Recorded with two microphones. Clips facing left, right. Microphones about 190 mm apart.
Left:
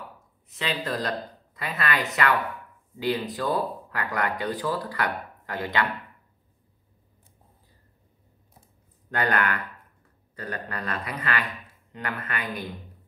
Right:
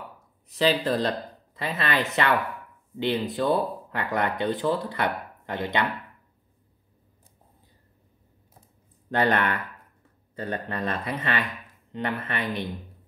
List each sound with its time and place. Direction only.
0.5 s speech: 35° right (ahead or behind)
9.1 s speech: 25° right (ahead or behind)